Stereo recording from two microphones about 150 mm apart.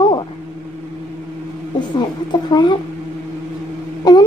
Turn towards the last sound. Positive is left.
turn(degrees=25)  # may be behind; listen again after turning